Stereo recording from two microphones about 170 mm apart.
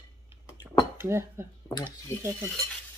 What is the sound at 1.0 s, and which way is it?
Speech, 15° right (ahead or behind).